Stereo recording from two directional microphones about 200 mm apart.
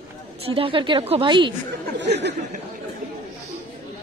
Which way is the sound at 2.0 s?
60° right (ahead or behind).